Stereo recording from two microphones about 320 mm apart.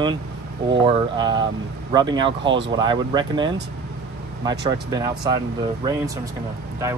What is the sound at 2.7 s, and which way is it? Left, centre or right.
Speech, centre.